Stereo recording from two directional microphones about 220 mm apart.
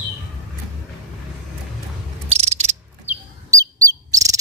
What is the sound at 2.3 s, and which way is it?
Ratchet, 30° right (ahead or behind).